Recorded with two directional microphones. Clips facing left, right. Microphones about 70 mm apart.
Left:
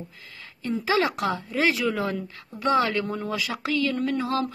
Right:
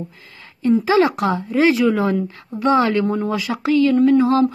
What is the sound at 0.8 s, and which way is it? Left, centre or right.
A woman's voice, centre.